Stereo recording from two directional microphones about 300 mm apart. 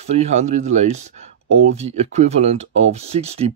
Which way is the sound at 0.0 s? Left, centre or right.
Right.